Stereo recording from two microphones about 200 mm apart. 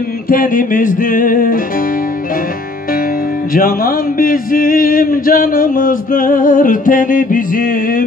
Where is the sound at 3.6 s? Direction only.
45° left (ahead or behind).